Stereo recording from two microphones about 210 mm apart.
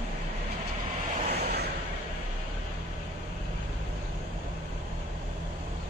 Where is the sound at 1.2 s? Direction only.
50° right (ahead or behind).